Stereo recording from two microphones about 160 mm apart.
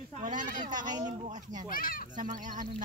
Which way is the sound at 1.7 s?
60° left (ahead or behind).